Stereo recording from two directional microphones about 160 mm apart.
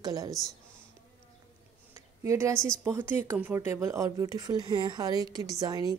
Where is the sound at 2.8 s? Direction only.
15° right (ahead or behind).